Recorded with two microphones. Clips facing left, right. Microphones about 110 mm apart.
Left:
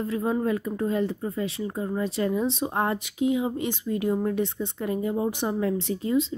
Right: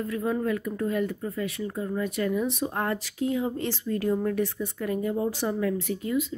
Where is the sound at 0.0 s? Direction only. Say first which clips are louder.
Left 2 dB; 25° left (ahead or behind).